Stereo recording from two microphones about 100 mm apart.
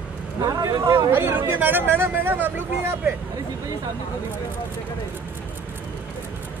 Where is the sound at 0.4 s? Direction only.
35° right (ahead or behind).